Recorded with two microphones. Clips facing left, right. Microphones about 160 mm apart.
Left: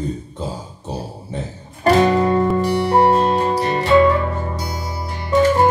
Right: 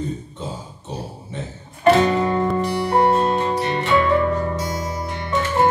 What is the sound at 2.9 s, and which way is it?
Music, 35° left (ahead or behind).